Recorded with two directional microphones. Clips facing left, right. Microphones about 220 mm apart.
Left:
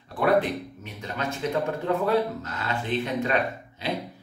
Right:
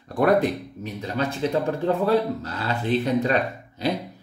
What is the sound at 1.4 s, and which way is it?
A man's voice, 30° right (ahead or behind).